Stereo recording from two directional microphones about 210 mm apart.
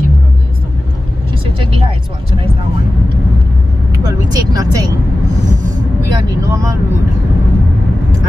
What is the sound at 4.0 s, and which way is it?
Speech, 15° right (ahead or behind).